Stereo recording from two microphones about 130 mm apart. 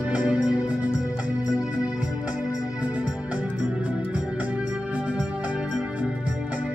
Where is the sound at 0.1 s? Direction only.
10° right (ahead or behind).